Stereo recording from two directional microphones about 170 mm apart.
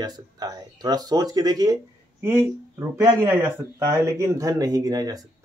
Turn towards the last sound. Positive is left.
turn(degrees=-20)  # may be behind; listen again after turning